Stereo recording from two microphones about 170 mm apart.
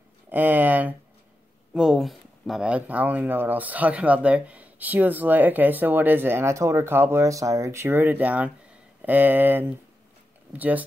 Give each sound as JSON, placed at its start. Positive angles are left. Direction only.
{"t": 0.3, "sound": "speech", "side_deg": -10}